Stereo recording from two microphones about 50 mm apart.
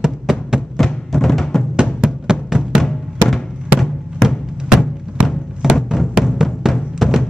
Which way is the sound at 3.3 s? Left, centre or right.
Centre.